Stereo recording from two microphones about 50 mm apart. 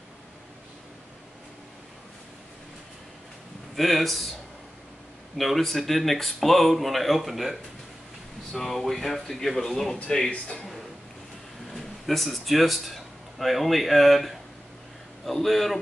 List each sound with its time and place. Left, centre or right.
3.7 s speech: centre
5.4 s speech: centre
8.5 s speech: centre
9.9 s speech: centre
10.5 s a sound: centre
11.7 s speech: centre